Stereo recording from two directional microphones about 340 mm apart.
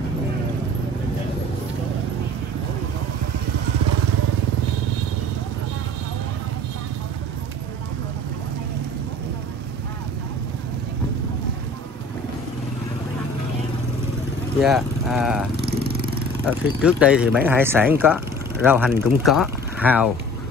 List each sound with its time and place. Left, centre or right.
14.6 s vehicle: centre
15.5 s vehicle: right
16.4 s speech: centre